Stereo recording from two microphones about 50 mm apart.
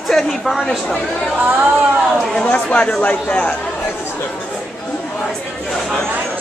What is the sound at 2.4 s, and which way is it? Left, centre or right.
Speech, left.